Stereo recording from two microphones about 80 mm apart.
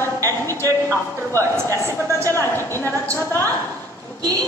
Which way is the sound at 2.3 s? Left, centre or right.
Left.